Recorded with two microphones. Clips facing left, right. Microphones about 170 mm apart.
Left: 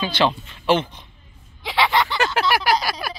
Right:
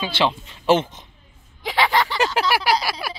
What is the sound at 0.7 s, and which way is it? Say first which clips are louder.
Speech: right 2 dB; 45° right (ahead or behind).